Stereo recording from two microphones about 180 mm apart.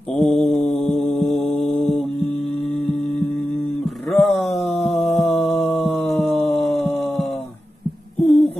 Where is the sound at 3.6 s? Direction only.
Centre (ahead or behind).